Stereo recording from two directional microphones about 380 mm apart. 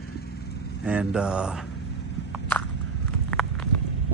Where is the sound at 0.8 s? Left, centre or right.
Centre.